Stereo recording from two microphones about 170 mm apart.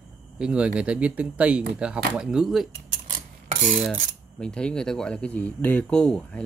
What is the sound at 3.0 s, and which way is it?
Filing, 50° right (ahead or behind).